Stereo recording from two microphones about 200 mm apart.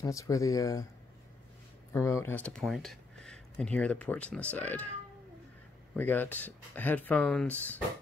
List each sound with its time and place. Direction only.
0.0 s speech: 15° left (ahead or behind)
1.9 s speech: 15° left (ahead or behind)
5.9 s speech: 10° left (ahead or behind)